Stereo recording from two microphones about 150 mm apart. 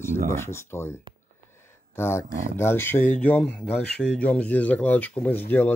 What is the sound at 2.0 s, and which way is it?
Speech, 15° left (ahead or behind).